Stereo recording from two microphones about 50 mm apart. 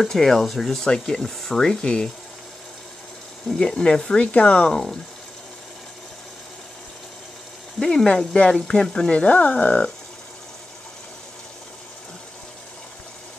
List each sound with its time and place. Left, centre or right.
0.0 s speech: centre
3.5 s speech: centre
7.8 s speech: left
9.1 s speech: left